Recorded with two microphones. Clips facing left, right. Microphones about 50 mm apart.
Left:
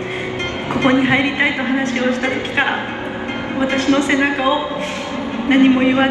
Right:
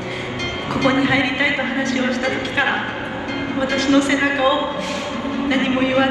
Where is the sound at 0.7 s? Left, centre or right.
Left.